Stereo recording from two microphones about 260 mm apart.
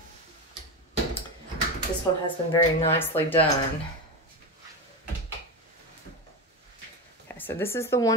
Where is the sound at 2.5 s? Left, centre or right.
Left.